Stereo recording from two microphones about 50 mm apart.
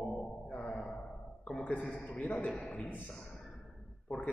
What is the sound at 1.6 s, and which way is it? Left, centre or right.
Speech, left.